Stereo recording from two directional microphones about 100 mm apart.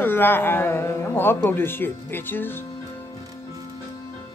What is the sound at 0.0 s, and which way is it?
Speech, 20° left (ahead or behind).